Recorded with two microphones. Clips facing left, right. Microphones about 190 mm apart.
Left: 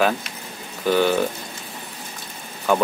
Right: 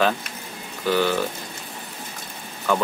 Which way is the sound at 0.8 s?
15° left (ahead or behind).